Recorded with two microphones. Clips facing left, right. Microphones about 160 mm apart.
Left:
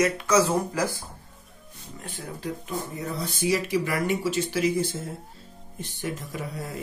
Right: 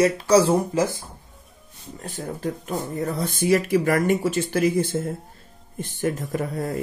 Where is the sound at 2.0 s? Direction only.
45° right (ahead or behind).